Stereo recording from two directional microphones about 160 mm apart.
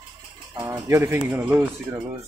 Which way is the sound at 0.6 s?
15° right (ahead or behind).